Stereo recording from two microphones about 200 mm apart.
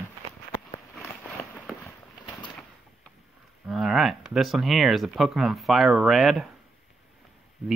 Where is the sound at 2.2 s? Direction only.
20° left (ahead or behind).